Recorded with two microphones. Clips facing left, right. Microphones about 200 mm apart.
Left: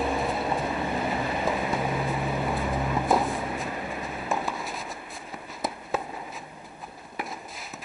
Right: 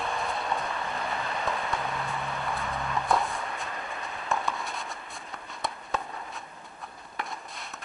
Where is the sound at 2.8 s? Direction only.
15° left (ahead or behind).